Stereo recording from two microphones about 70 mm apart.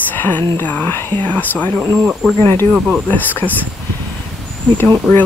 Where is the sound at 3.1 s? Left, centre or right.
Left.